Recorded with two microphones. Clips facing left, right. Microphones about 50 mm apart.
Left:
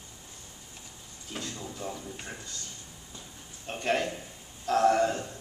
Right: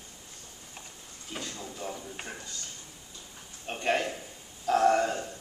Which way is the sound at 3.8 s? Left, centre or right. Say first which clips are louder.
Even; centre.